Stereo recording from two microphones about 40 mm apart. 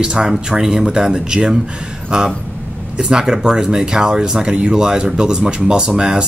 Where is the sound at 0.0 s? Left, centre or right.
Centre.